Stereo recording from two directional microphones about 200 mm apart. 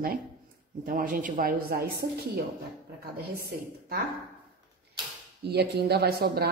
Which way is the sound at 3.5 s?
50° right (ahead or behind).